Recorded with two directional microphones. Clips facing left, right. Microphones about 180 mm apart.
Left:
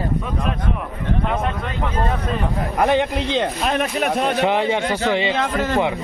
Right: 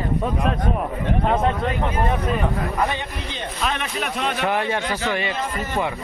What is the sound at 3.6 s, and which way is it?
Speech, 45° left (ahead or behind).